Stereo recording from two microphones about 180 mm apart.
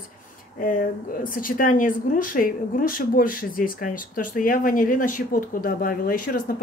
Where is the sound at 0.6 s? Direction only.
50° left (ahead or behind).